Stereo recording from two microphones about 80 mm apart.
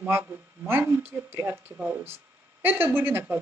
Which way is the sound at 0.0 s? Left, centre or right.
Right.